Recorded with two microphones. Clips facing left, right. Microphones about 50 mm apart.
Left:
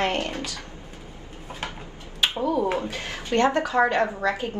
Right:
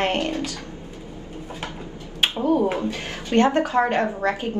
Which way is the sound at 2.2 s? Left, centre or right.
Right.